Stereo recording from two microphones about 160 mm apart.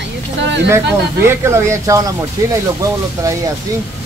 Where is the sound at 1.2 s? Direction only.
15° right (ahead or behind).